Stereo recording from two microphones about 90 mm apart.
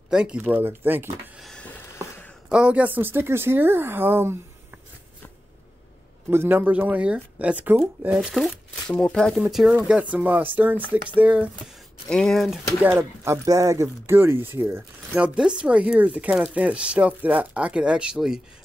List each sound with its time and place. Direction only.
0.1 s speech: 10° right (ahead or behind)
2.5 s speech: 15° right (ahead or behind)
6.3 s speech: 25° right (ahead or behind)
8.2 s speech: centre (ahead or behind)
9.8 s speech: 15° right (ahead or behind)
12.1 s speech: 5° left (ahead or behind)
12.8 s speech: 25° right (ahead or behind)
15.1 s speech: 10° right (ahead or behind)